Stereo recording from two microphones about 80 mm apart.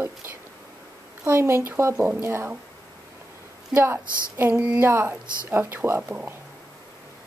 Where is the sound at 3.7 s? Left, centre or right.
Right.